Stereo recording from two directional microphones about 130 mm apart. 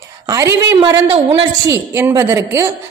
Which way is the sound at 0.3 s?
20° right (ahead or behind).